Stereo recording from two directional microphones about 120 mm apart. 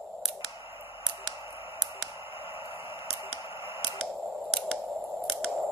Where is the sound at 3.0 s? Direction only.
50° left (ahead or behind).